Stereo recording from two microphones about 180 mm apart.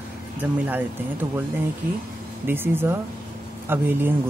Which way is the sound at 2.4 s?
10° right (ahead or behind).